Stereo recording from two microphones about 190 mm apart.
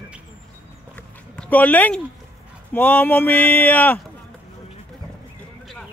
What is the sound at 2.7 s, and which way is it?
Speech, 10° left (ahead or behind).